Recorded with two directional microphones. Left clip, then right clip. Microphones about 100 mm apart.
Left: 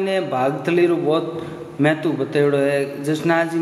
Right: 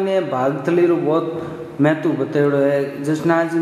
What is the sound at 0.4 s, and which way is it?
Speech, 40° left (ahead or behind).